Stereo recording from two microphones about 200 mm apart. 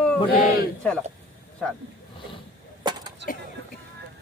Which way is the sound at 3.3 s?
45° left (ahead or behind).